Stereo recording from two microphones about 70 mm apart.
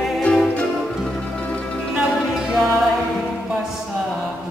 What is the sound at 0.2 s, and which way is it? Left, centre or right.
Music, centre.